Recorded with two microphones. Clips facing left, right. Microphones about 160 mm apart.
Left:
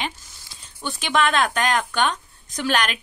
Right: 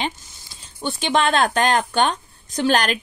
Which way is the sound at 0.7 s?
30° right (ahead or behind).